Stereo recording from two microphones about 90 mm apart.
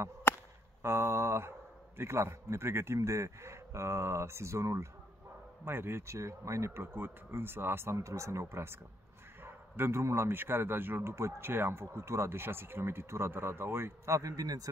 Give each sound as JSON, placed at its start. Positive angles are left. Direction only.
{"t": 0.3, "sound": "chop", "side_deg": 25}
{"t": 0.8, "sound": "a man's voice", "side_deg": -30}